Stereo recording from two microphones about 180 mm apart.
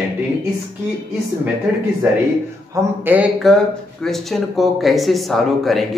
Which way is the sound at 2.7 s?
10° right (ahead or behind).